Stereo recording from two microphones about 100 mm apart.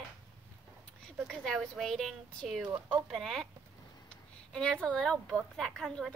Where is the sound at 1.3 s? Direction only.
Centre (ahead or behind).